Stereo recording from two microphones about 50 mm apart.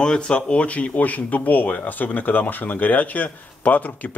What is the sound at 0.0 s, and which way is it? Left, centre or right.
Speech, centre.